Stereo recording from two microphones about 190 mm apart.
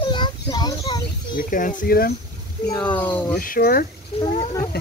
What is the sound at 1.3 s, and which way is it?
Speech, 45° left (ahead or behind).